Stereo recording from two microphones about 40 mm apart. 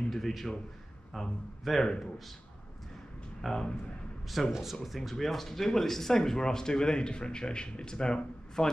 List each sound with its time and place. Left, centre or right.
0.1 s a man's voice: centre
3.4 s a man's voice: centre; by 8.6 s left